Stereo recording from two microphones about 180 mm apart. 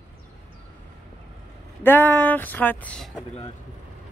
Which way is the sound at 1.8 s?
10° left (ahead or behind).